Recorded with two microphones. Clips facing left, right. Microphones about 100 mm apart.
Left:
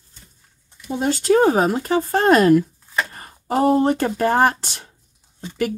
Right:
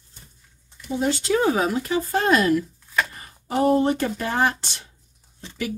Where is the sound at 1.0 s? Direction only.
45° left (ahead or behind).